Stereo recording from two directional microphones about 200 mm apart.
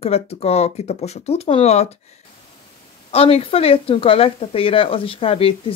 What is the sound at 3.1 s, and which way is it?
A woman's voice, 30° left (ahead or behind).